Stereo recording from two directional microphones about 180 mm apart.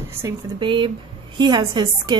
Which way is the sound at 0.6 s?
25° right (ahead or behind).